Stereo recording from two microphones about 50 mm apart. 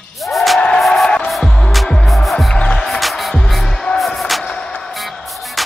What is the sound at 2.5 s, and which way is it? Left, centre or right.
Music, left.